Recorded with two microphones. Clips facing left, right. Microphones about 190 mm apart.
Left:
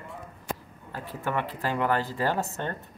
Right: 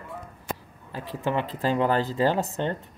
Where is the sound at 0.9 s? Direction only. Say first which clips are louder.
Right 4 dB; 25° right (ahead or behind).